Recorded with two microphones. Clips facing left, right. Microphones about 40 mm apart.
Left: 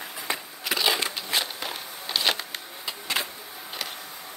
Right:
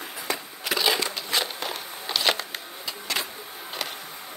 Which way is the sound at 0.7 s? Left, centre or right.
Centre.